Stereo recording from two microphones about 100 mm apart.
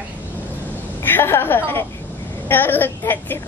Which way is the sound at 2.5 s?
20° left (ahead or behind).